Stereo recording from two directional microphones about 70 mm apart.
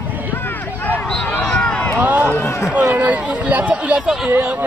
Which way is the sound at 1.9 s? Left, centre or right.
Right.